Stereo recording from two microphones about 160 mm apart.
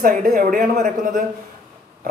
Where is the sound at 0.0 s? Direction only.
55° right (ahead or behind).